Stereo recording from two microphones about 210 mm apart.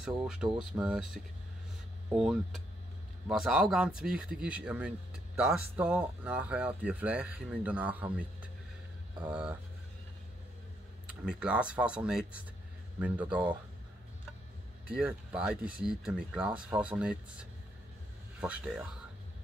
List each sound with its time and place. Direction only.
0.4 s speech: 5° right (ahead or behind)
11.1 s speech: 5° right (ahead or behind)
14.9 s speech: 5° right (ahead or behind)